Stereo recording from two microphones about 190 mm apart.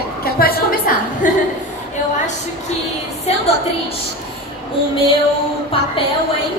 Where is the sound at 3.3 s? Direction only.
35° left (ahead or behind).